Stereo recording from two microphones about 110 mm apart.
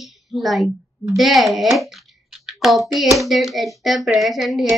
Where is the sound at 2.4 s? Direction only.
Centre (ahead or behind).